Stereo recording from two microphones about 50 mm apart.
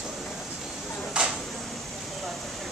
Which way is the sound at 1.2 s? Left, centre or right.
Right.